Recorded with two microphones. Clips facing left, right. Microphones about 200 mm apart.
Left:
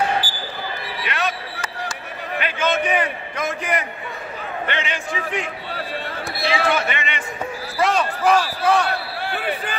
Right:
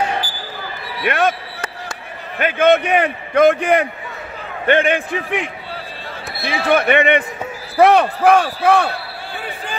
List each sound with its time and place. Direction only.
1.0 s speech: 55° right (ahead or behind)
9.2 s basketball bounce: 65° left (ahead or behind)